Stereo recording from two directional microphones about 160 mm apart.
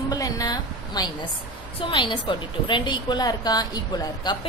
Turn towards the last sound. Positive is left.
turn(degrees=25)  # may be behind; listen again after turning